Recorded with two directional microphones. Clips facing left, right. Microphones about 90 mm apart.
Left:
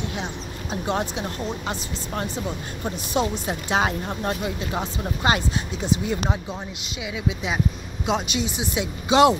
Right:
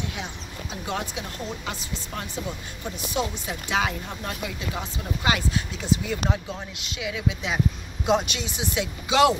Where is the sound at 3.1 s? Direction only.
40° left (ahead or behind).